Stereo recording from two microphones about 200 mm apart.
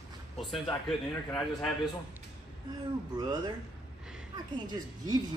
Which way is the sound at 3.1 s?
20° right (ahead or behind).